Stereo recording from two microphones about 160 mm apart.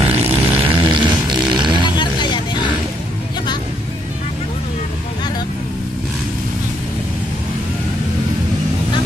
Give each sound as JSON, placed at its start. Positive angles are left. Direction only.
{"t": 0.0, "sound": "music", "side_deg": -35}
{"t": 1.8, "sound": "vehicle", "side_deg": 30}